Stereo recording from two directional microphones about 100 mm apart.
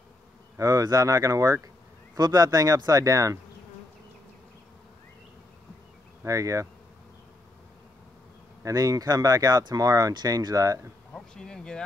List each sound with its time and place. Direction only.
0.6 s speech: 35° right (ahead or behind)
6.2 s speech: 30° right (ahead or behind)
8.6 s speech: 35° right (ahead or behind)
11.1 s speech: 5° left (ahead or behind)